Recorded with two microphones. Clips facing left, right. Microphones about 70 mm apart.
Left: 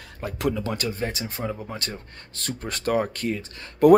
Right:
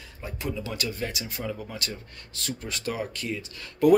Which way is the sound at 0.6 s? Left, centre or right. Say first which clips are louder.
Left 4 dB; left.